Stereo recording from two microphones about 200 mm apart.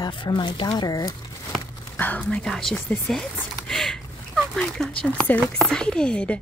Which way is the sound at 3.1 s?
Centre (ahead or behind).